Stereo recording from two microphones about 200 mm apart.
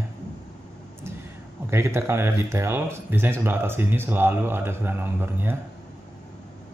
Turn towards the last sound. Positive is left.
turn(degrees=-10)  # may be behind; listen again after turning